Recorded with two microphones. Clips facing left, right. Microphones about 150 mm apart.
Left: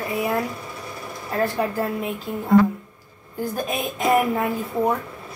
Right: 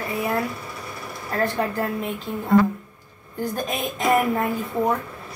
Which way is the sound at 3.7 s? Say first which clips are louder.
Left 1 dB; 5° left (ahead or behind).